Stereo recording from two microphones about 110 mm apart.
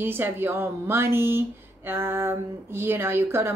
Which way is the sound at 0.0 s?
20° right (ahead or behind).